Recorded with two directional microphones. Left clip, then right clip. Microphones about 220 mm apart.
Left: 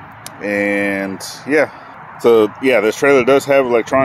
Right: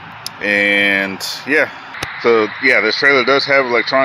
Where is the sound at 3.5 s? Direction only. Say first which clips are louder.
Left 1 dB; 25° left (ahead or behind).